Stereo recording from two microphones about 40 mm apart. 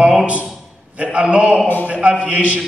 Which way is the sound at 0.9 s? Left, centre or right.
Right.